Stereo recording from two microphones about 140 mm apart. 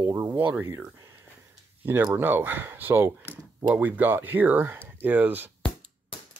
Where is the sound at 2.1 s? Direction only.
15° right (ahead or behind).